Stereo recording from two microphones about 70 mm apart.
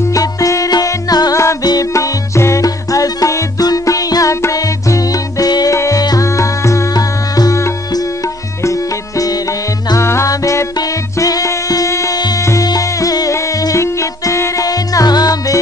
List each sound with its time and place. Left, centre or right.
0.1 s music: left
1.3 s music: left
1.6 s music: left
2.0 s music: left
9.9 s music: left
12.6 s music: left
13.3 s music: left